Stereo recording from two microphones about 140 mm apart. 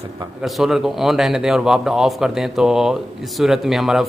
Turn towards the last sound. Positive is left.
turn(degrees=0)  # may be behind; listen again after turning